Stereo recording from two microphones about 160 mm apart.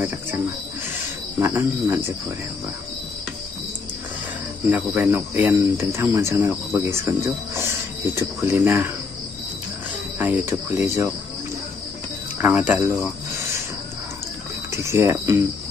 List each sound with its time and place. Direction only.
1.4 s speech: 15° right (ahead or behind)
4.6 s speech: 10° right (ahead or behind)
10.1 s speech: 10° right (ahead or behind)
12.4 s speech: 10° right (ahead or behind)
14.7 s speech: 15° right (ahead or behind)